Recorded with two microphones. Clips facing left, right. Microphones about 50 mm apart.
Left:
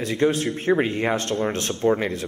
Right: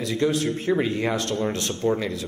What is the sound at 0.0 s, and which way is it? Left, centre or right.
Speech, left.